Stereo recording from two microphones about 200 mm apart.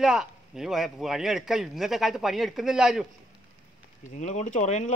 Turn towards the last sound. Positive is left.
turn(degrees=35)  # may be behind; listen again after turning